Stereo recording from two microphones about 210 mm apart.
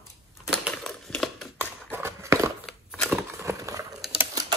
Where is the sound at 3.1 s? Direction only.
10° right (ahead or behind).